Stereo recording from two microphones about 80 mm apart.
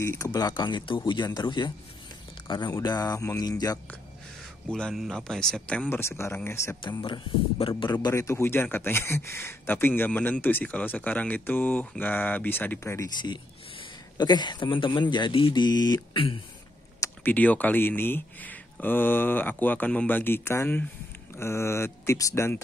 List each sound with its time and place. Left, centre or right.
0.2 s speech: left
4.6 s speech: centre
5.9 s speech: left
7.8 s speech: left
8.1 s speech: left
12.8 s speech: left
13.2 s speech: left
17.2 s speech: centre; by 22.6 s left